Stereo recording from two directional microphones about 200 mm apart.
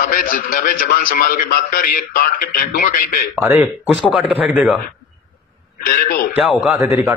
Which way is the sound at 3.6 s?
5° right (ahead or behind).